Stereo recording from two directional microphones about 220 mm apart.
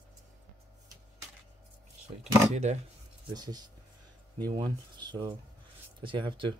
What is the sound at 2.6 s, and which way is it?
Speech, 30° right (ahead or behind).